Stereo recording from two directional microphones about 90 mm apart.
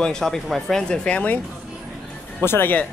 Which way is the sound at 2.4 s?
25° left (ahead or behind).